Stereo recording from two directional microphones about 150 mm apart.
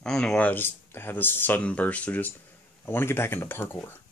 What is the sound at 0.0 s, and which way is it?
Speech, 5° left (ahead or behind).